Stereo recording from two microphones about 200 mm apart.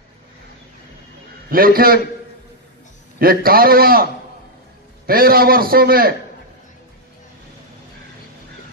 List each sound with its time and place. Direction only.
1.5 s a man's voice: 45° right (ahead or behind)
3.2 s a man's voice: 50° right (ahead or behind)